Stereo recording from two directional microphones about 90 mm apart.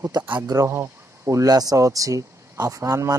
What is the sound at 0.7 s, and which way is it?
Speech, 35° right (ahead or behind).